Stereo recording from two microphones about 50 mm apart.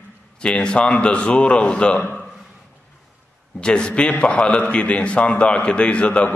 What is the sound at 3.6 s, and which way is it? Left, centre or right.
A man's voice, centre.